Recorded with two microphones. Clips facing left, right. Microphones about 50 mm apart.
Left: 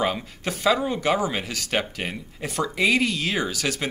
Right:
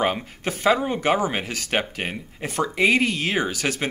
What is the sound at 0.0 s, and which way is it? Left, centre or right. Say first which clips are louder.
Speech: right 2 dB; right.